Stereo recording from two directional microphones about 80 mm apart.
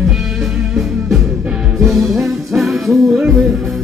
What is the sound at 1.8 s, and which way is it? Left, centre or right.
Music, centre.